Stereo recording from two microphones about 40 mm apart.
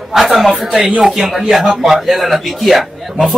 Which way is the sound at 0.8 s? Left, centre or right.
Right.